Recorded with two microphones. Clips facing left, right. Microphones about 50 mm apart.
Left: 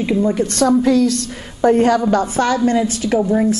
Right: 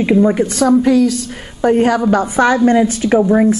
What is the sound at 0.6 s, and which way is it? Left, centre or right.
A woman's voice, centre.